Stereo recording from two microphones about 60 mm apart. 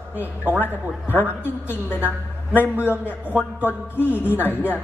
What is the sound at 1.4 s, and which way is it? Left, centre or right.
Speech, left.